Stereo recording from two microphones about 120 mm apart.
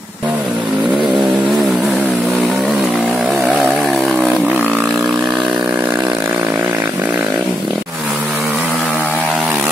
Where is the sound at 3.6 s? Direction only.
5° right (ahead or behind).